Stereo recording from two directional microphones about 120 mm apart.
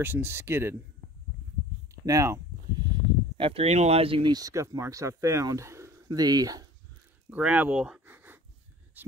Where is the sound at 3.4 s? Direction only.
55° right (ahead or behind).